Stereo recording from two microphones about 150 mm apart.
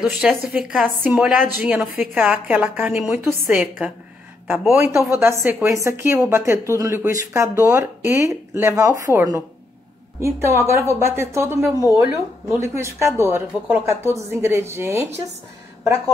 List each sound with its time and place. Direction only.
0.0 s a woman's voice: 5° right (ahead or behind)